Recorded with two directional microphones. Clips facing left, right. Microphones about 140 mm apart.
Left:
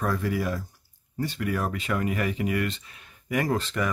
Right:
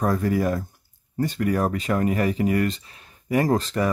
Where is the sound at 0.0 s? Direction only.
40° right (ahead or behind).